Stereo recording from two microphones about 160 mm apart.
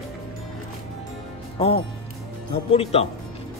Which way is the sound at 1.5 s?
35° left (ahead or behind).